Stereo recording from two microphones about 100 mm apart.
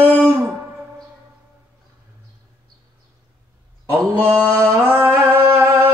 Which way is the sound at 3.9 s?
15° left (ahead or behind).